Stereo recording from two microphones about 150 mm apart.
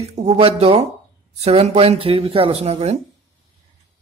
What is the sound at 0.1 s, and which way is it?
A man's voice, 45° right (ahead or behind).